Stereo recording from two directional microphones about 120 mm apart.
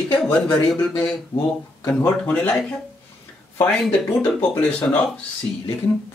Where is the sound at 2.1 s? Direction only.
10° left (ahead or behind).